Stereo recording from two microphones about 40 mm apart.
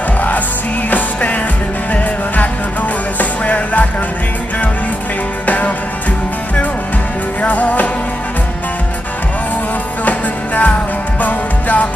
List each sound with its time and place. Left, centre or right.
0.8 s music: left
7.4 s music: left
10.0 s music: left